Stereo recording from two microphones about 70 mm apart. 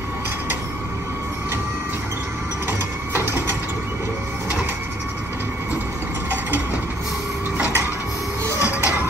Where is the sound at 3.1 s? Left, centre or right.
Right.